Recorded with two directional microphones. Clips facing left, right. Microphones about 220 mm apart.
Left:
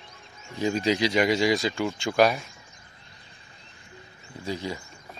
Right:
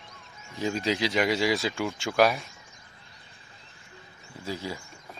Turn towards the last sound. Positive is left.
turn(degrees=-5)  # may be behind; listen again after turning